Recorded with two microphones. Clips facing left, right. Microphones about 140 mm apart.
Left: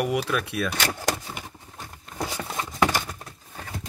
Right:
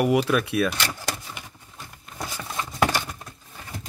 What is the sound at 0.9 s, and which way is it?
Speech, 50° left (ahead or behind).